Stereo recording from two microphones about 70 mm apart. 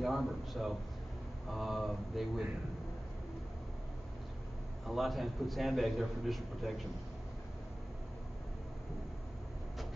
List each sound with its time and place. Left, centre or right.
0.0 s a man's voice: centre
4.8 s a man's voice: centre